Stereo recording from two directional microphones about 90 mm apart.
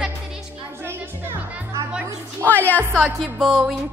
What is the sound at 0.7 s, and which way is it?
Speech, 25° right (ahead or behind).